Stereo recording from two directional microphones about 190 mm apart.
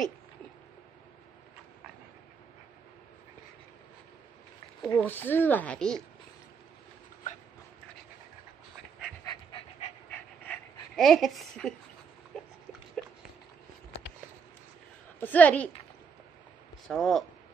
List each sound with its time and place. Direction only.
4.8 s speech: 10° left (ahead or behind)
9.2 s dog: 25° left (ahead or behind)
10.1 s dog: 10° left (ahead or behind)
12.3 s a sound: centre (ahead or behind)
13.0 s dog: 5° left (ahead or behind)
15.1 s speech: 10° left (ahead or behind)
16.8 s speech: centre (ahead or behind)